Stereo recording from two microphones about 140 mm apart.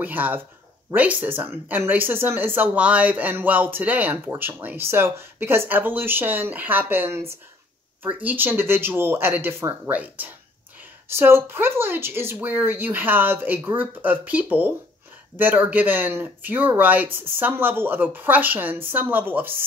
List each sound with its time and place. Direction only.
0.0 s speech: 10° right (ahead or behind)